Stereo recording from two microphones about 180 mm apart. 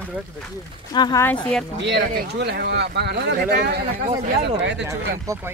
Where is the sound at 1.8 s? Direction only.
75° right (ahead or behind).